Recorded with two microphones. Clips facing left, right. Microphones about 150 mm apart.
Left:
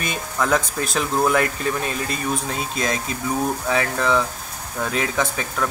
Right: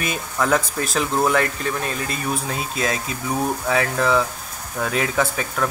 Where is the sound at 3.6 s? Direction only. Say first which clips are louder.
Right 2 dB; 5° right (ahead or behind).